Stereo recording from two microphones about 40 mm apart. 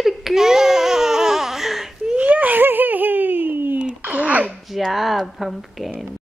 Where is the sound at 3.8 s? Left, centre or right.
Right.